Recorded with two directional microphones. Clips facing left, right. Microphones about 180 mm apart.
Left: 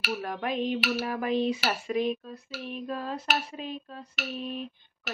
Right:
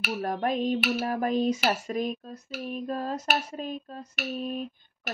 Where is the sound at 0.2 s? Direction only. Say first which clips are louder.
Right 6 dB; 45° right (ahead or behind).